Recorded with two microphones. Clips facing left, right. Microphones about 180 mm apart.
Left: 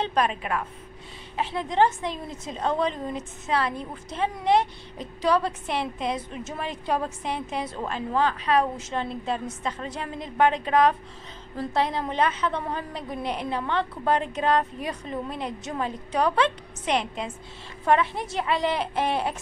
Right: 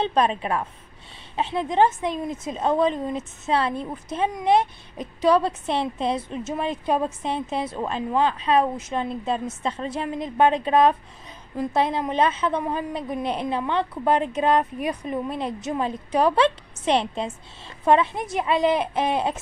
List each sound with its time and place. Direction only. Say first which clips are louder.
0.0 s a woman's voice: right 3 dB; 25° right (ahead or behind)